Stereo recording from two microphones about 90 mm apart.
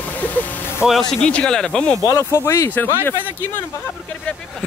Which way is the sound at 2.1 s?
30° left (ahead or behind).